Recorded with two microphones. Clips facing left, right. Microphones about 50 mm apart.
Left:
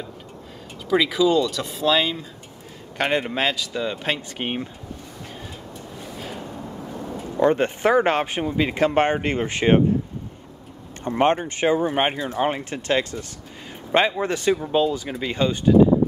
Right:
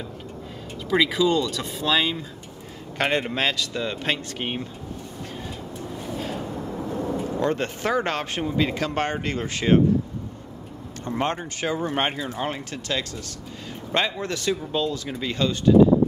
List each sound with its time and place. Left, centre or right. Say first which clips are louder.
0.8 s speech: left 2 dB; centre
4.4 s speech: left 2 dB; centre
6.1 s a sound: right 4 dB; centre
7.3 s speech: left 9 dB; centre
11.1 s speech: left 7 dB; left
11.9 s speech: left 3 dB; centre